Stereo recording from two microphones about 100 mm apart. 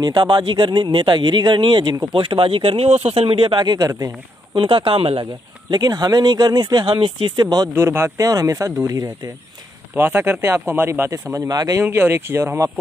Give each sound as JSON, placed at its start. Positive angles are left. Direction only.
{"t": 0.0, "sound": "speech", "side_deg": -45}
{"t": 4.6, "sound": "speech", "side_deg": -60}
{"t": 5.2, "sound": "speech", "side_deg": -45}
{"t": 7.7, "sound": "speech", "side_deg": -25}
{"t": 9.9, "sound": "speech", "side_deg": -20}
{"t": 11.8, "sound": "speech", "side_deg": -25}